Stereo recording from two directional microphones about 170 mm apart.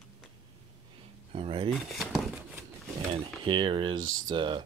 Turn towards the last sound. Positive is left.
turn(degrees=-30)  # may be behind; listen again after turning